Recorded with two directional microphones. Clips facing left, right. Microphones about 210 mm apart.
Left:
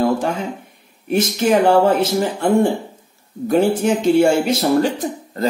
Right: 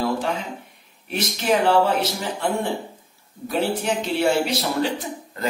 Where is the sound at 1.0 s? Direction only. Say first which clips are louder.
Left 7 dB; 50° left (ahead or behind).